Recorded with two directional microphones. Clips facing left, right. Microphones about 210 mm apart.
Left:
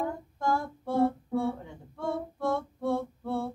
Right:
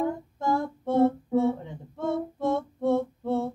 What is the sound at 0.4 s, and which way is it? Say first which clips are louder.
Female singing: right 2 dB; 20° right (ahead or behind).